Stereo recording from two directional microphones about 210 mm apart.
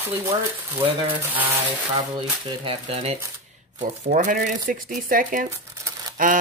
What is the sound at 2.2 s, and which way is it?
Speech, 25° right (ahead or behind).